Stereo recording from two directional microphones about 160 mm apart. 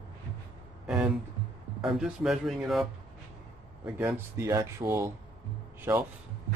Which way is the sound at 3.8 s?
10° right (ahead or behind).